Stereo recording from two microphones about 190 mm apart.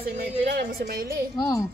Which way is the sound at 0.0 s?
50° right (ahead or behind).